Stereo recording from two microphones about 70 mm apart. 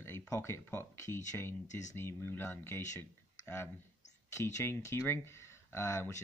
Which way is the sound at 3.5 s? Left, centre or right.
Left.